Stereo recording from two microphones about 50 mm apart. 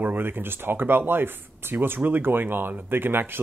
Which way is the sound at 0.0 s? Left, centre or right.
Right.